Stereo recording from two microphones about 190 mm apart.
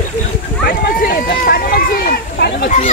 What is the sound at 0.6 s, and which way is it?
Run, 50° left (ahead or behind).